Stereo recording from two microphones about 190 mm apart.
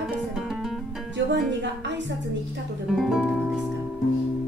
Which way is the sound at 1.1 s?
70° right (ahead or behind).